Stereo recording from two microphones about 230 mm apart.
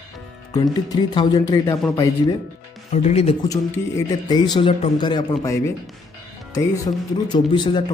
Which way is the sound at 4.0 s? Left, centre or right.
Centre.